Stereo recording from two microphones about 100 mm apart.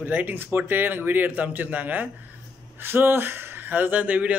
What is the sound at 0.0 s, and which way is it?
A man's voice, 20° right (ahead or behind).